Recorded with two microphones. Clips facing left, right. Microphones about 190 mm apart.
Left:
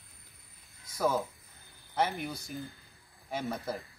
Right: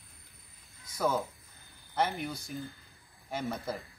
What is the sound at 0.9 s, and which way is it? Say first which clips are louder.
Speech: left 1 dB; centre (ahead or behind).